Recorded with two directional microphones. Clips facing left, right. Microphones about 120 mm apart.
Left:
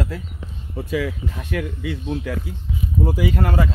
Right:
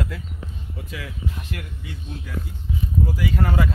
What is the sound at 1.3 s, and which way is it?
Speech, 80° left.